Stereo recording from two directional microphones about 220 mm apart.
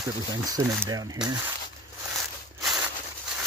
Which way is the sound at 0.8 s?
15° right (ahead or behind).